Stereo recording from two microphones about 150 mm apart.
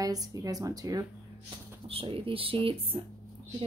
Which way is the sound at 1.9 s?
40° right (ahead or behind).